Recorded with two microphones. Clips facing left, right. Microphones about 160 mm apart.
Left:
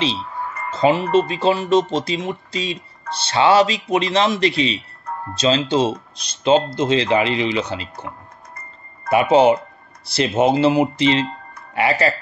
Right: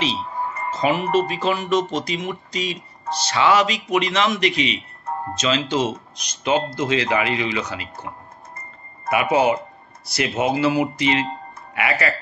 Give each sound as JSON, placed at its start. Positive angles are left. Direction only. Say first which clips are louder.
{"t": 0.4, "sound": "wind chime", "louder": "right 1 dB", "side_deg": -25}
{"t": 0.7, "sound": "music", "louder": "left 5 dB", "side_deg": 30}
{"t": 1.1, "sound": "speech", "louder": "left 3 dB", "side_deg": 30}
{"t": 9.1, "sound": "speech", "louder": "left 5 dB", "side_deg": 30}